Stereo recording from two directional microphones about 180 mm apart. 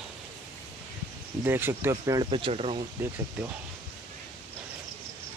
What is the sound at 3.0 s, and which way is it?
Speech, 15° right (ahead or behind).